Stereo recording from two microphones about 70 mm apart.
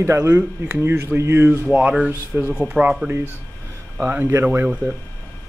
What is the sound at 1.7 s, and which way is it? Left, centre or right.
Speech, centre.